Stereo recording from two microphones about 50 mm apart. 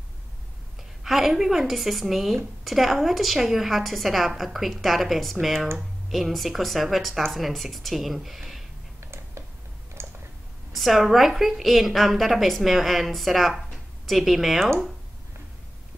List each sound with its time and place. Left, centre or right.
1.0 s a woman's voice: centre
9.0 s a sound: right
10.0 s clicking: right
10.7 s a woman's voice: centre